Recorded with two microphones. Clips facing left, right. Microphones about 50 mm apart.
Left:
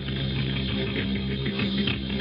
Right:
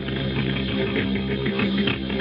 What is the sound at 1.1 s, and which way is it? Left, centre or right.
Music, right.